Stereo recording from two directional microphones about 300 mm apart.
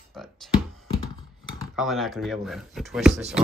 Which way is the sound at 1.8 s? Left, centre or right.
Centre.